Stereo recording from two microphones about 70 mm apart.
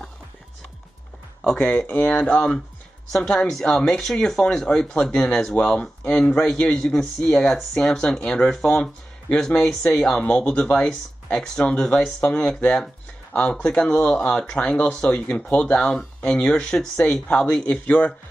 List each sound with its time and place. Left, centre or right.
1.4 s speech: centre
10.2 s speech: centre